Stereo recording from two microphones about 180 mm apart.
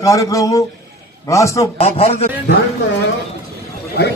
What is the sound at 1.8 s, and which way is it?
Speech, 35° left (ahead or behind).